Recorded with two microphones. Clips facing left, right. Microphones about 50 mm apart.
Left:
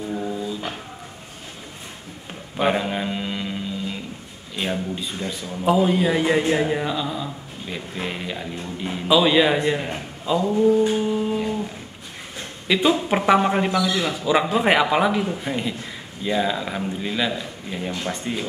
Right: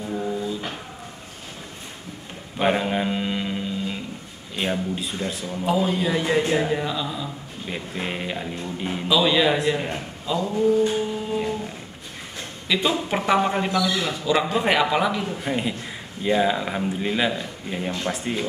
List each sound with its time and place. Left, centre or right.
0.0 s a sound: centre
2.6 s mantra: centre
4.6 s speech: centre
5.7 s speech: centre
7.6 s a man's voice: centre
9.0 s a man's voice: centre
15.3 s a man's voice: centre